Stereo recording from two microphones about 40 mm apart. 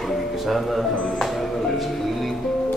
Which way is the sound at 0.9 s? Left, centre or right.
Left.